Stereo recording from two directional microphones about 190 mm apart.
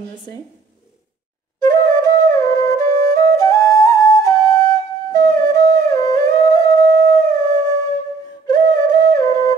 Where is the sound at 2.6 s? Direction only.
15° left (ahead or behind).